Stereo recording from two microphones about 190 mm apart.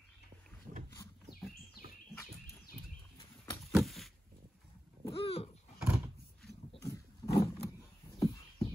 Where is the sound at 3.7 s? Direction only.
Centre (ahead or behind).